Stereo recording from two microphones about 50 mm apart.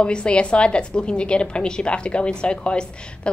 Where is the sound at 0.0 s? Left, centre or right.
Left.